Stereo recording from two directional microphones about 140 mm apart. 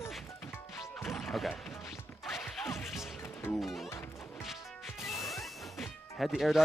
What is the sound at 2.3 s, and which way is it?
Smash, centre (ahead or behind).